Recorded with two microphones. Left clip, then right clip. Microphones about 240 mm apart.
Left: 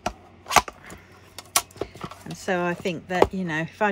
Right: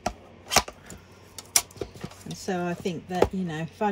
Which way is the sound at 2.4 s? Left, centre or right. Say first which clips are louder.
Left 5 dB; centre.